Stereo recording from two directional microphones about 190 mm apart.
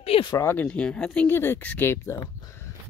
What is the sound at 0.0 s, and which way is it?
Speech, 30° left (ahead or behind).